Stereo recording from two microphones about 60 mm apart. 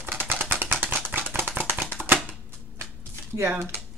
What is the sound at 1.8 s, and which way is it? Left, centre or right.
Typewriter, right.